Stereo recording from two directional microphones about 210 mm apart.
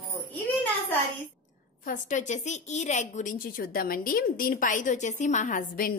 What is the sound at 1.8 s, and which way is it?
Speech, 35° left (ahead or behind).